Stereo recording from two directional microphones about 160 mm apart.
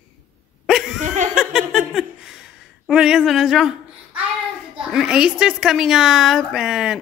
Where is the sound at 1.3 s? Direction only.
5° right (ahead or behind).